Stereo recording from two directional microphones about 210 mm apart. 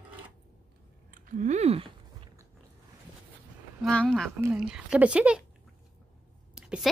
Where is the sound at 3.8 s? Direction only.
5° left (ahead or behind).